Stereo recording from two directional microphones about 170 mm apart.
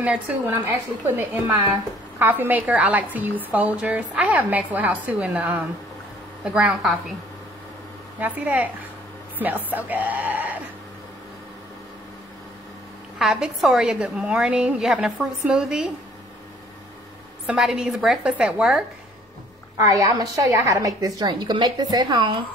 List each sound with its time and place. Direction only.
0.0 s a woman's voice: 10° right (ahead or behind)
8.2 s a woman's voice: 10° right (ahead or behind)
13.2 s a woman's voice: centre (ahead or behind)
17.5 s a woman's voice: 5° right (ahead or behind)
19.8 s a woman's voice: 20° right (ahead or behind)